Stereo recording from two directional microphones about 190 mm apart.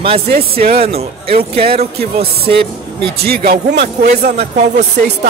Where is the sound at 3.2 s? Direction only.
55° right (ahead or behind).